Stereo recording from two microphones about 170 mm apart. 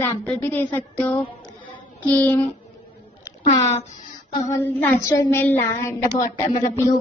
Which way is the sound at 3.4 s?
40° left (ahead or behind).